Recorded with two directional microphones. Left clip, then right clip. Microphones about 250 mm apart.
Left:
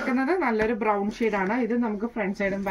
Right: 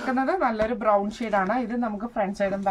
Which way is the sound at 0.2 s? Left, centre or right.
Centre.